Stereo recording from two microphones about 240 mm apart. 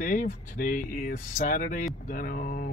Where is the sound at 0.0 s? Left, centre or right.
Left.